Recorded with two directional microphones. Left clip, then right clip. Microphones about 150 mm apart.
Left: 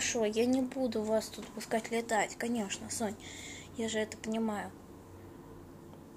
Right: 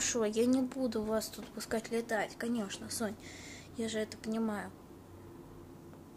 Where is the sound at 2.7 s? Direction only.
90° right.